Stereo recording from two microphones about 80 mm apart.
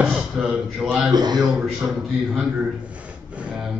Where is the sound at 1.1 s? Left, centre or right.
Right.